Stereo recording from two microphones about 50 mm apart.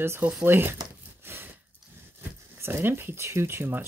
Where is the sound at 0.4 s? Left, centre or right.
Right.